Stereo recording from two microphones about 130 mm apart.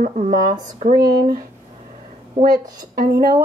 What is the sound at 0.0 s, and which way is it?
Speech, 60° right (ahead or behind).